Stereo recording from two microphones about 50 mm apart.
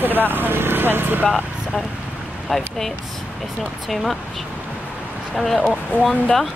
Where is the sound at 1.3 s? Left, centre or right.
Centre.